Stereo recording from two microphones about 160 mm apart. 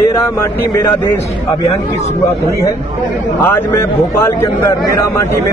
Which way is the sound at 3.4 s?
15° left (ahead or behind).